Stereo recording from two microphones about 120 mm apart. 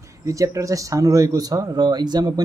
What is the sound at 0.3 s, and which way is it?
Speech, 25° right (ahead or behind).